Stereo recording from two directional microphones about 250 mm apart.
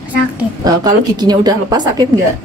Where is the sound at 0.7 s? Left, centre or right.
Centre.